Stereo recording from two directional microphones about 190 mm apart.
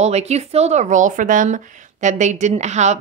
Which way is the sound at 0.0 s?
35° right (ahead or behind).